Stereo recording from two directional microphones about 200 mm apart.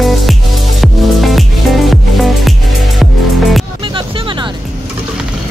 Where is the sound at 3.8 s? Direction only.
25° right (ahead or behind).